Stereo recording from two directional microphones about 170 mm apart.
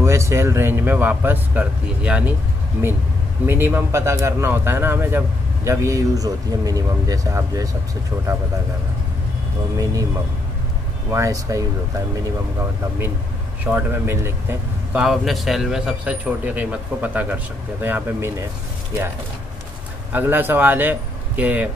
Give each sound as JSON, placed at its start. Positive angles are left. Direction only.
{"t": 0.0, "sound": "a man's voice", "side_deg": -15}
{"t": 3.4, "sound": "a man's voice", "side_deg": -10}
{"t": 11.1, "sound": "speech", "side_deg": -20}
{"t": 13.7, "sound": "a man's voice", "side_deg": -15}
{"t": 20.1, "sound": "speech", "side_deg": -10}